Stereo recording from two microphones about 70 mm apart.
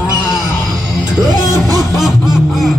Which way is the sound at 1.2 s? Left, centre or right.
Right.